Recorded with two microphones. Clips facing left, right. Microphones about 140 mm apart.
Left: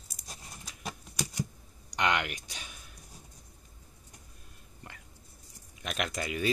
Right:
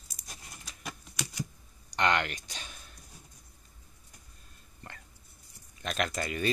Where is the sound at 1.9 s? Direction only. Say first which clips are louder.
Right 1 dB; 10° left (ahead or behind).